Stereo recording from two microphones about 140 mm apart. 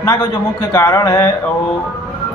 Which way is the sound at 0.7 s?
25° left (ahead or behind).